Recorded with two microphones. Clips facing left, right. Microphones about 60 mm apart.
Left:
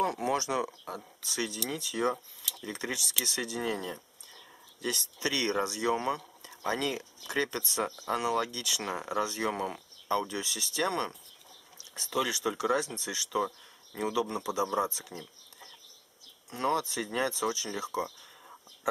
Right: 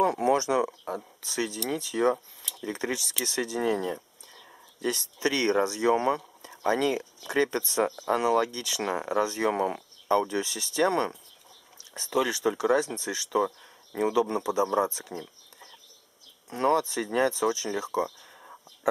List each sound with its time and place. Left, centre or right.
0.2 s speech: right
1.7 s speech: right
2.6 s speech: right
12.3 s speech: right
16.4 s speech: right
18.0 s a sound: centre